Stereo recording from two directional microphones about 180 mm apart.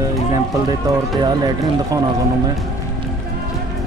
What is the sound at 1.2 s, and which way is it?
Speech, 20° right (ahead or behind).